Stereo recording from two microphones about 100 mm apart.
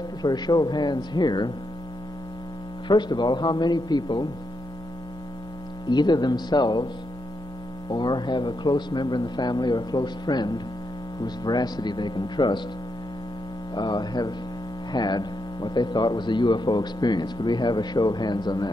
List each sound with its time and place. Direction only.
0.2 s speech: 45° left (ahead or behind)
2.9 s speech: 50° left (ahead or behind)
5.9 s speech: 45° left (ahead or behind)
7.9 s speech: 45° left (ahead or behind)
13.7 s speech: 45° left (ahead or behind)